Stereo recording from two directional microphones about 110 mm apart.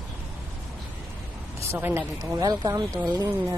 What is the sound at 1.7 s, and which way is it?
Speech, 20° right (ahead or behind).